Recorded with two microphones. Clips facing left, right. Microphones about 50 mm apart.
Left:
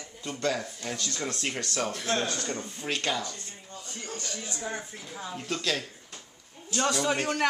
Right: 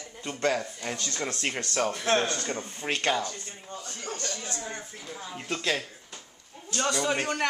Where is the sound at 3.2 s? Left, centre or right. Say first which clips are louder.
Right 3 dB; right.